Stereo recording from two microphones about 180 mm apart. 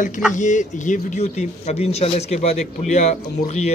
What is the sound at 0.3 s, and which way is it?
Speech, 45° left (ahead or behind).